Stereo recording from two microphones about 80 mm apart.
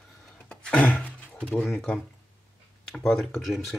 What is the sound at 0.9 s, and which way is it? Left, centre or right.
Roaring cats, left.